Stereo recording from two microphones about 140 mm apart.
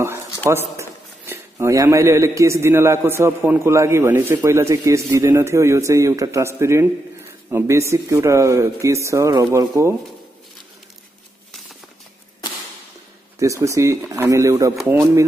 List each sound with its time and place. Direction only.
0.5 s speech: 20° right (ahead or behind)
13.4 s speech: 20° right (ahead or behind)